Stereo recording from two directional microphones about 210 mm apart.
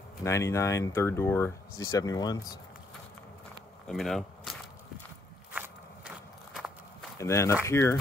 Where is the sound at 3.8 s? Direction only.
Centre (ahead or behind).